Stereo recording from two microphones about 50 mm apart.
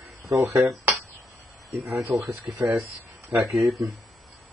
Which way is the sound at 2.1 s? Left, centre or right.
Right.